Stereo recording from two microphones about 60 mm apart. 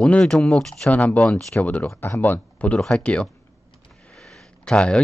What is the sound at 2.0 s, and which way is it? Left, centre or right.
Speech, left.